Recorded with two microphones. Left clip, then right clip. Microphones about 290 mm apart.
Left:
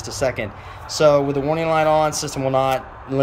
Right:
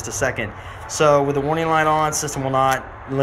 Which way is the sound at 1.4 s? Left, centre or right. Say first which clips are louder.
Even; centre.